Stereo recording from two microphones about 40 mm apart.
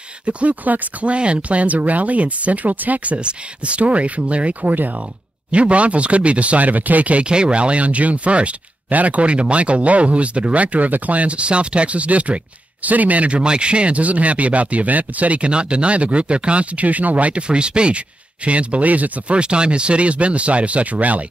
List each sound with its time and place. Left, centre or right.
0.2 s speech: right
1.1 s speech: right
3.2 s speech: right
5.5 s speech: right
7.2 s speech: right
13.4 s speech: right